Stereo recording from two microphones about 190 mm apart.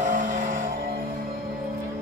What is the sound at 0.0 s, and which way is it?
Music, 45° right (ahead or behind).